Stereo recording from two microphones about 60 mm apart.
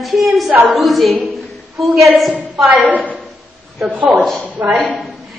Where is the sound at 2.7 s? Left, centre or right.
Right.